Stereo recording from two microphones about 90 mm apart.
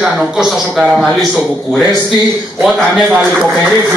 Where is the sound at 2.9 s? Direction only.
Centre (ahead or behind).